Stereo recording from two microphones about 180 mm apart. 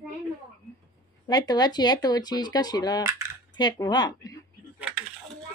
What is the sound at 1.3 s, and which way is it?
Speech, 20° left (ahead or behind).